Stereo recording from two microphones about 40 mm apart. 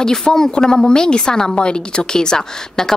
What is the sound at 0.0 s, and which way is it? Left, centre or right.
A woman's voice, centre.